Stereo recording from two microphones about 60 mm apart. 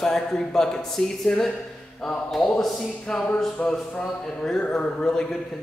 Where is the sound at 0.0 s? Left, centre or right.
Centre.